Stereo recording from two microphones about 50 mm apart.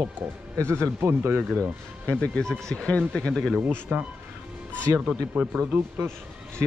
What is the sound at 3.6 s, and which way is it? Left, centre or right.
Speech, right.